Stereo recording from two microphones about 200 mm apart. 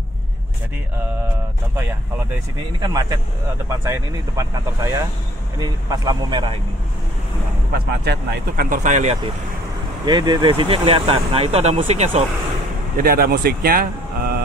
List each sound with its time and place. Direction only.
2.8 s speech: 20° right (ahead or behind)
7.7 s speech: 55° right (ahead or behind); by 9.2 s 35° right (ahead or behind)
10.0 s speech: 20° right (ahead or behind)
12.9 s speech: 45° right (ahead or behind)